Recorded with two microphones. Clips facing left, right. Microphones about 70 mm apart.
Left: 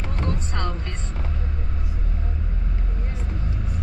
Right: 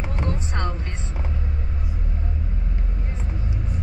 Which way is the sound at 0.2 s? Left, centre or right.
Centre.